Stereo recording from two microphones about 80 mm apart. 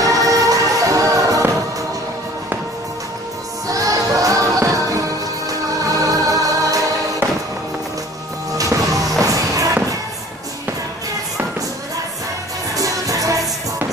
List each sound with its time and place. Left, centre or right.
0.0 s music: right
3.6 s music: right
8.5 s music: right
12.7 s music: right